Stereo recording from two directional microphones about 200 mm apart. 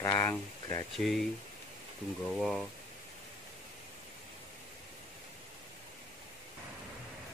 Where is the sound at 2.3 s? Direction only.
Centre (ahead or behind).